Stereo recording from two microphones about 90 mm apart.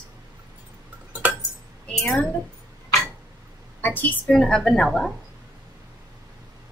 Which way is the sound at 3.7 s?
20° left (ahead or behind).